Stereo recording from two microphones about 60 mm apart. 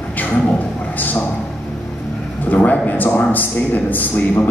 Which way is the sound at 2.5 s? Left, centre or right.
Left.